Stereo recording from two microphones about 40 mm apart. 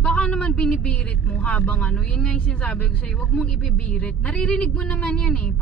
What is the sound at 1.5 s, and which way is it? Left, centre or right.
Speech, left.